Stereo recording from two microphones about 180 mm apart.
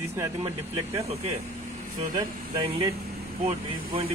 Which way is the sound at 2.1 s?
25° right (ahead or behind).